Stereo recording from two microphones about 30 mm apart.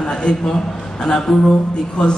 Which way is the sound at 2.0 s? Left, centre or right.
Left.